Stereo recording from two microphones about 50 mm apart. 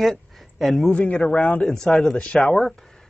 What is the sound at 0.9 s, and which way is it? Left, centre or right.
Speech, left.